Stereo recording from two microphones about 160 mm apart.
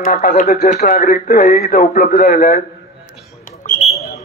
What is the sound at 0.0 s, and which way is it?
Speech, 60° left (ahead or behind).